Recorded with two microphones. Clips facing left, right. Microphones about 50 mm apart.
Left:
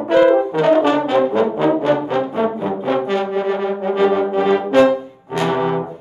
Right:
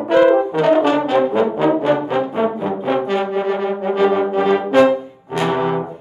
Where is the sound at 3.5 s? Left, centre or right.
Centre.